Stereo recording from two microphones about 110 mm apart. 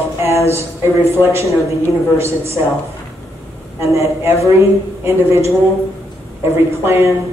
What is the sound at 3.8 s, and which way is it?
A man's voice, 25° right (ahead or behind).